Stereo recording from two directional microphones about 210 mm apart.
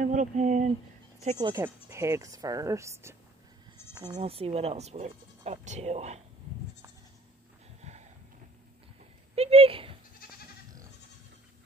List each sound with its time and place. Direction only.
0.0 s a sound: 35° right (ahead or behind)
1.2 s speech: 30° right (ahead or behind)
1.5 s speech: 15° right (ahead or behind)
3.9 s bleat: 15° right (ahead or behind)
4.2 s speech: 25° right (ahead or behind)
7.8 s a sound: 30° right (ahead or behind)
9.3 s speech: 30° right (ahead or behind)